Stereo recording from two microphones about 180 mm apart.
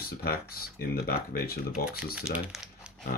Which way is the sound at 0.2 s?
60° left (ahead or behind).